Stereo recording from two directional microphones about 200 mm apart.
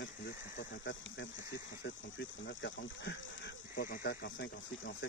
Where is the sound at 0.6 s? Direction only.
65° left (ahead or behind).